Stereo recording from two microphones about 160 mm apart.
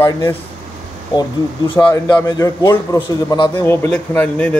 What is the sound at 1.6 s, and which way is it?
A man's voice, 30° left (ahead or behind).